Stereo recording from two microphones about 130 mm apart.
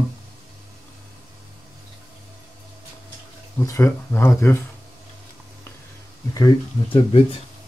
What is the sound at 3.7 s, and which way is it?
Speech, 20° left (ahead or behind).